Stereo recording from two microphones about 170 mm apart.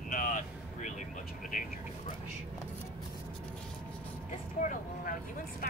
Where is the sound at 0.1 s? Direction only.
50° left (ahead or behind).